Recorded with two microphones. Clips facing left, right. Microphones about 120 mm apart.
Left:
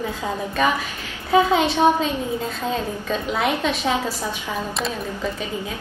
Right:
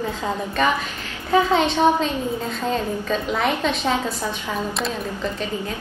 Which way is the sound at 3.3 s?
5° left (ahead or behind).